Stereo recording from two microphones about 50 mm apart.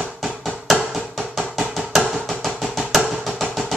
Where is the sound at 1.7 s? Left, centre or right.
Centre.